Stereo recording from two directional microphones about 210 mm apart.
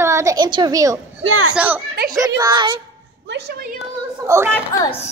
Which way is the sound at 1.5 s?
5° right (ahead or behind).